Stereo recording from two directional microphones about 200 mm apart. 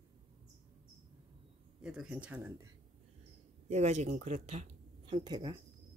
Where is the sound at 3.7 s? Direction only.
35° right (ahead or behind).